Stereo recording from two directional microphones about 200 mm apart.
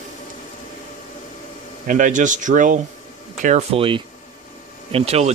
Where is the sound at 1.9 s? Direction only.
40° right (ahead or behind).